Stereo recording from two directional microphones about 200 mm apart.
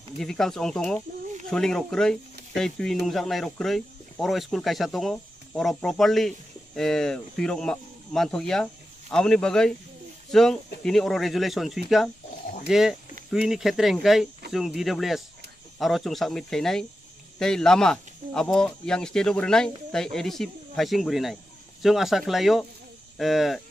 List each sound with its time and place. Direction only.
0.2 s speech: centre (ahead or behind)